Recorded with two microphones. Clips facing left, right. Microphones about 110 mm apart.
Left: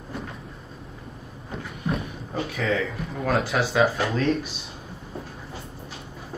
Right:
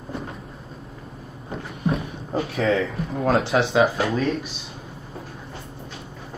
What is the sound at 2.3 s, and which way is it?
Speech, 30° right (ahead or behind).